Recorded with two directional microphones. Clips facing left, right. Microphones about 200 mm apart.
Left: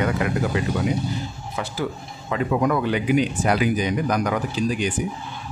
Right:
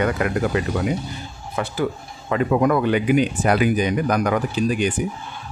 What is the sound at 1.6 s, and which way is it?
Speech, 55° right (ahead or behind).